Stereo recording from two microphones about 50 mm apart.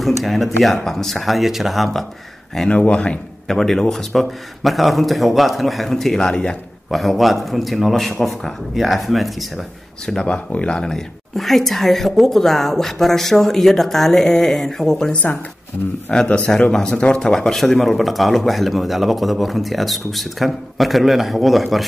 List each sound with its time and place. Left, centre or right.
0.0 s speech: centre
2.7 s speech: left
3.4 s speech: centre
6.9 s speech: centre
10.0 s speech: centre
11.3 s speech: centre